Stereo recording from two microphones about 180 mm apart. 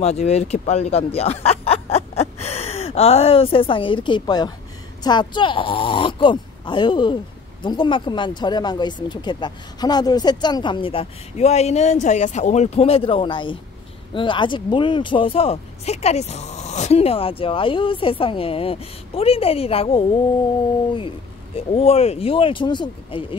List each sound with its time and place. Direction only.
0.0 s a woman's voice: 35° left (ahead or behind)
21.5 s speech: 35° left (ahead or behind)